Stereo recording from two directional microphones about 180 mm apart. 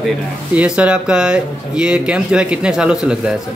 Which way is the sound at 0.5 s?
5° right (ahead or behind).